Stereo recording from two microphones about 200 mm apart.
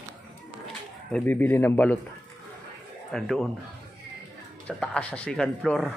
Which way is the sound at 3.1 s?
Centre (ahead or behind).